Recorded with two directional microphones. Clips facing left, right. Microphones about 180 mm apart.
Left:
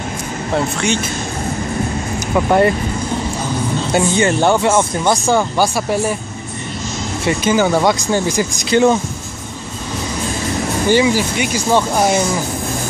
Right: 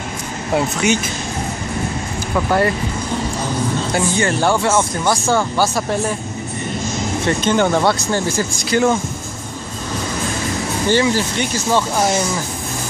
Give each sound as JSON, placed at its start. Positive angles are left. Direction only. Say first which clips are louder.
{"t": 0.6, "sound": "speech", "louder": "right 1 dB", "side_deg": -5}
{"t": 2.3, "sound": "speech", "louder": "left 4 dB", "side_deg": 20}
{"t": 3.9, "sound": "speech", "louder": "left 6 dB", "side_deg": 20}
{"t": 7.2, "sound": "speech", "louder": "left 2 dB", "side_deg": 5}
{"t": 10.9, "sound": "speech", "louder": "left 2 dB", "side_deg": 10}